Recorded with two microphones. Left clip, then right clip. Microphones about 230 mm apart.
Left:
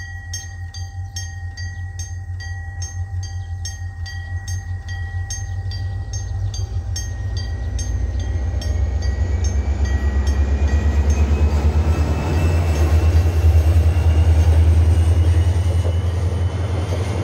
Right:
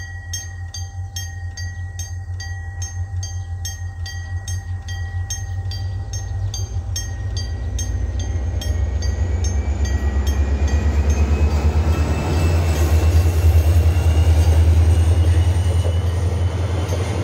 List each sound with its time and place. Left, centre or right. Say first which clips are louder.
0.3 s a sound: right 2 dB; right
2.8 s train: right 1 dB; right
7.9 s train: even; centre; by 17.2 s right